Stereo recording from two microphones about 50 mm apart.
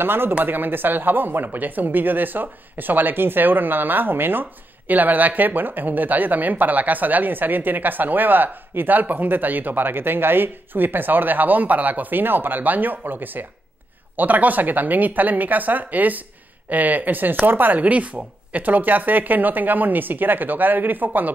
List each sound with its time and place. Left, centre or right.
0.0 s speech: right
0.3 s speech: right